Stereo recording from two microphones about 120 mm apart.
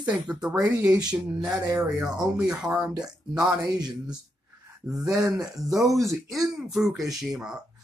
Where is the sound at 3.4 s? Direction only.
35° right (ahead or behind).